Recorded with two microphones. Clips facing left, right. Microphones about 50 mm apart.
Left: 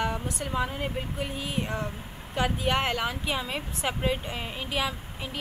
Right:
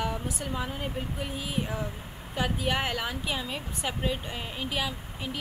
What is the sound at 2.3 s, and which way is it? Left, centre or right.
Speech, centre.